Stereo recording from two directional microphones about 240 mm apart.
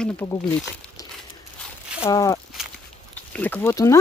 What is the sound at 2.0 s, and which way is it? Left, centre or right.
Speech, centre.